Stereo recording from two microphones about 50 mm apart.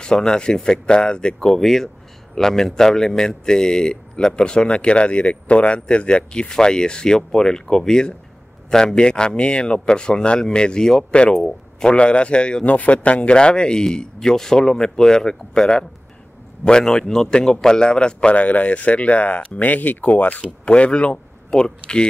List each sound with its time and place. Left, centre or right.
0.0 s a man's voice: centre
12.6 s a man's voice: left